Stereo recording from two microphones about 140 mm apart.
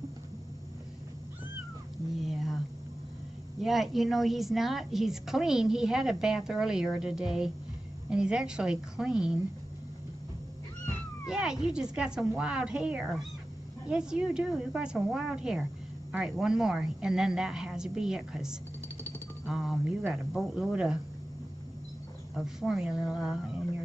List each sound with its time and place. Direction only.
3.6 s a woman's voice: centre (ahead or behind)
11.2 s a woman's voice: 5° right (ahead or behind)
22.3 s a woman's voice: centre (ahead or behind)